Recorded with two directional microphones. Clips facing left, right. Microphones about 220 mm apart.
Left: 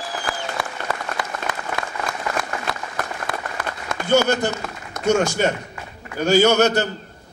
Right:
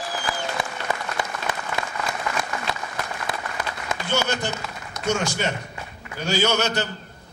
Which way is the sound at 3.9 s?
45° left (ahead or behind).